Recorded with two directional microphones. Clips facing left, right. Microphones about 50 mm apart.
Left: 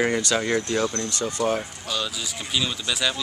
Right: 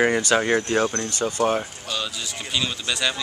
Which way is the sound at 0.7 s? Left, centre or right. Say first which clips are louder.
Right 2 dB; right.